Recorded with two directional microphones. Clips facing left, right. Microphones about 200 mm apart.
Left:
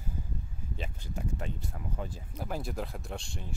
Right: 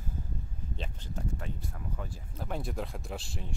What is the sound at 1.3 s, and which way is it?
Speech, 20° left (ahead or behind).